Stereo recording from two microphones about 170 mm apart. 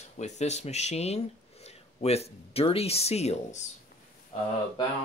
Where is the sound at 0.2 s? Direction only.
40° left (ahead or behind).